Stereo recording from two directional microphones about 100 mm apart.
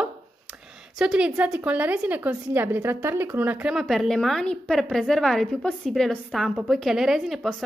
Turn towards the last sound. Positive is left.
turn(degrees=0)  # may be behind; listen again after turning